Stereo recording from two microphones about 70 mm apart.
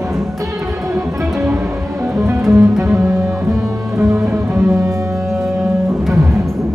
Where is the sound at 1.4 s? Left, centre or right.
Right.